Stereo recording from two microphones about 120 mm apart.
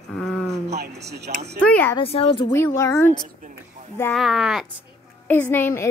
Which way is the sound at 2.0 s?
50° left (ahead or behind).